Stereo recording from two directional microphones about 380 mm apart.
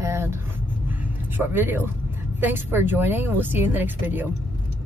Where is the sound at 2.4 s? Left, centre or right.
Centre.